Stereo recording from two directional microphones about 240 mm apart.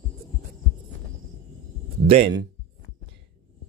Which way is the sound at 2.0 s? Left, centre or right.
Right.